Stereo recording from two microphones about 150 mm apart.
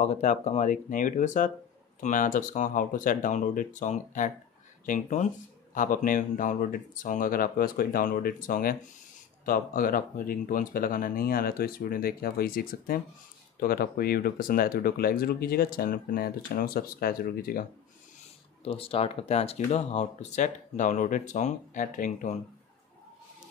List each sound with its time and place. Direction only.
0.0 s speech: 50° left (ahead or behind); by 13.0 s 75° left (ahead or behind)
13.6 s speech: 85° left
18.6 s speech: 40° left (ahead or behind); by 22.4 s 60° left (ahead or behind)